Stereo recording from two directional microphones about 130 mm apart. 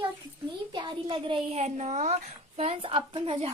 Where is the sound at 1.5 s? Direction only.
60° right (ahead or behind).